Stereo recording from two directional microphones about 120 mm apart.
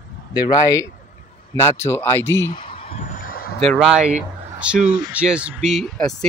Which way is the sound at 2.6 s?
50° left (ahead or behind).